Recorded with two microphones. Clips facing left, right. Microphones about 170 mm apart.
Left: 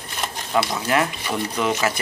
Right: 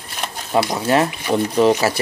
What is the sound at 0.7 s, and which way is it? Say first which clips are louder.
Speech: right 4 dB; 35° right (ahead or behind).